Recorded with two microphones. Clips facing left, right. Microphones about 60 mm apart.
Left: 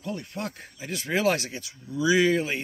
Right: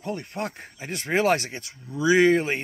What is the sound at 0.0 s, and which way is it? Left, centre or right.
Speech, right.